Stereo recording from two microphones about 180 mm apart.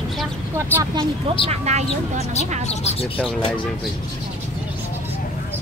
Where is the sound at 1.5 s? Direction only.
40° right (ahead or behind).